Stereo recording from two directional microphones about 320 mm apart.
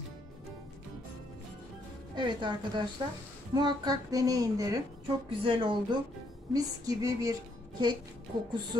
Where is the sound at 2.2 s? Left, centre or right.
Centre.